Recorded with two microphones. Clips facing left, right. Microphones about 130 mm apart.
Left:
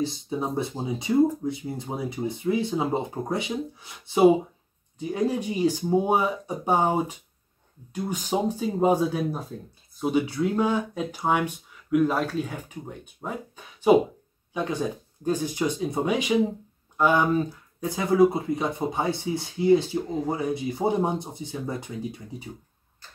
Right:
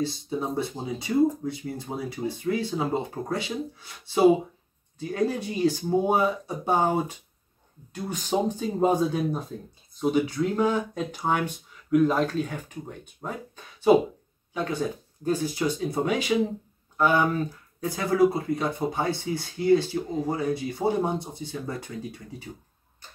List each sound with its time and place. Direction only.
0.3 s speech: 20° left (ahead or behind)